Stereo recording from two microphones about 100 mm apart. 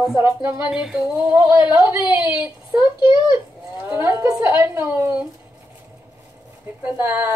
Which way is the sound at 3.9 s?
30° right (ahead or behind).